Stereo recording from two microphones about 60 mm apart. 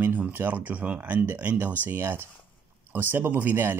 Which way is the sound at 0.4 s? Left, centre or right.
Right.